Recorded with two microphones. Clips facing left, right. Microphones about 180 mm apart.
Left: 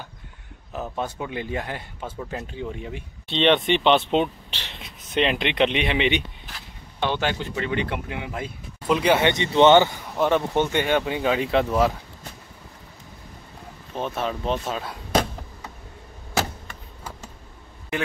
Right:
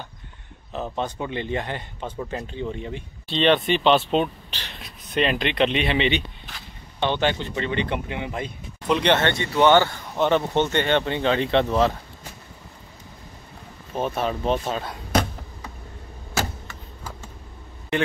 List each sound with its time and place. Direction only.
0.7 s speech: 5° left (ahead or behind)
3.3 s speech: 20° left (ahead or behind)
10.1 s speech: centre (ahead or behind)
13.9 s speech: 5° right (ahead or behind)